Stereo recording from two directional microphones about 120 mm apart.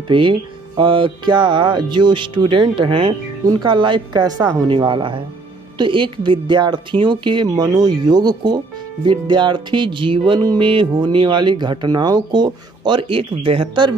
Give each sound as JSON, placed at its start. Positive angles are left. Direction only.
{"t": 0.1, "sound": "speech", "side_deg": -45}
{"t": 4.6, "sound": "speech", "side_deg": -45}